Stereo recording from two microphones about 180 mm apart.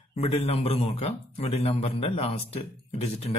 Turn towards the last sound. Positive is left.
turn(degrees=35)  # may be behind; listen again after turning